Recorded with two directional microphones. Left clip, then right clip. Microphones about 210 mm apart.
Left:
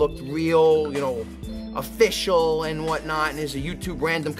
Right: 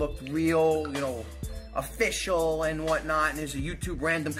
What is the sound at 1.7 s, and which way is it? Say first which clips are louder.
Speech: left 7 dB; 50° left (ahead or behind).